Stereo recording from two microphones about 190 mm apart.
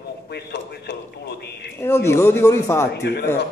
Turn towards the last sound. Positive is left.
turn(degrees=60)  # may be behind; listen again after turning